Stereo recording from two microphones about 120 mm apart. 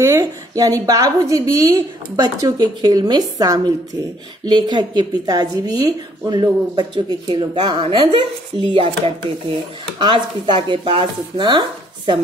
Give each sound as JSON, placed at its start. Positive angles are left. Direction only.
{"t": 0.0, "sound": "a woman's voice", "side_deg": -30}